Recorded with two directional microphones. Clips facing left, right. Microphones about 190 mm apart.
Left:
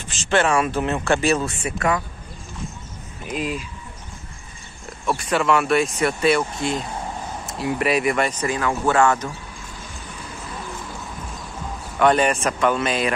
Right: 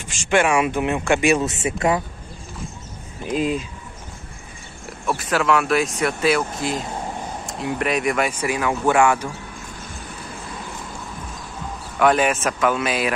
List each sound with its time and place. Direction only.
0.3 s speech: 15° right (ahead or behind)
3.3 s speech: 30° right (ahead or behind)
5.0 s speech: centre (ahead or behind)
12.0 s speech: 5° right (ahead or behind)